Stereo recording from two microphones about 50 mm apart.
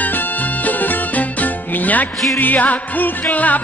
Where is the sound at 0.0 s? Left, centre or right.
Left.